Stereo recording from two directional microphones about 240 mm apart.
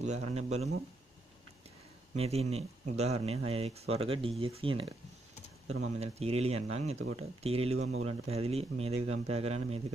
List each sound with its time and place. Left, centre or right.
0.0 s speech: right
2.1 s speech: right
5.9 s speech: right
7.9 s speech: right
8.3 s speech: right